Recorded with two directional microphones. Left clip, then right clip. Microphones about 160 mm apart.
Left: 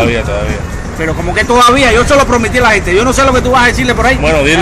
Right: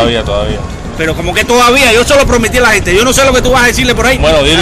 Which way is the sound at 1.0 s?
5° right (ahead or behind).